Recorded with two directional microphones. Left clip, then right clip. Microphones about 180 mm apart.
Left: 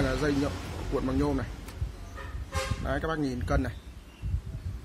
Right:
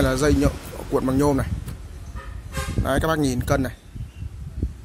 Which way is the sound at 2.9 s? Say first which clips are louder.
Right 11 dB; 60° right (ahead or behind).